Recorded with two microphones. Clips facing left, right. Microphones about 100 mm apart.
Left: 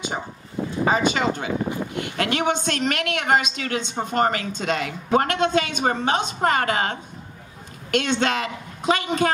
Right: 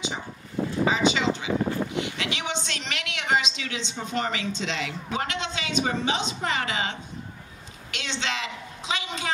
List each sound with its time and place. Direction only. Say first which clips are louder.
0.8 s a woman's voice: left 3 dB; 50° left (ahead or behind)